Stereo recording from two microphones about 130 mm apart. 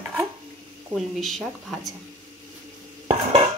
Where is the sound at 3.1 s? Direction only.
55° right (ahead or behind).